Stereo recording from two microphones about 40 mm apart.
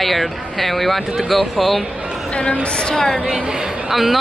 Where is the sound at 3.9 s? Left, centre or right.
Centre.